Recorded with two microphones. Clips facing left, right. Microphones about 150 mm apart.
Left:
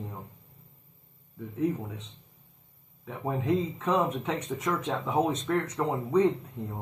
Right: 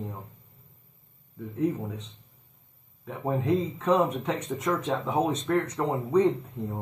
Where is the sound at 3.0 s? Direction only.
5° right (ahead or behind).